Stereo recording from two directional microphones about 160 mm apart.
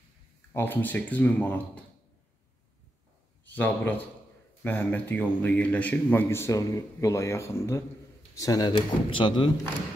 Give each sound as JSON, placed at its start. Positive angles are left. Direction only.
{"t": 0.5, "sound": "a man's voice", "side_deg": 15}
{"t": 3.5, "sound": "a man's voice", "side_deg": 10}